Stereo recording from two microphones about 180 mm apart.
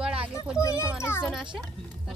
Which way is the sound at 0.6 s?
15° left (ahead or behind).